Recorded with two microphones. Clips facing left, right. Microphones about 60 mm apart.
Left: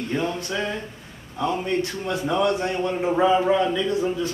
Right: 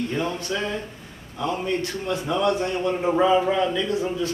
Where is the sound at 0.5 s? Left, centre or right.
Centre.